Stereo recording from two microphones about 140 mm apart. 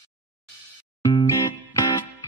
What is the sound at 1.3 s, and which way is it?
Music, 25° left (ahead or behind).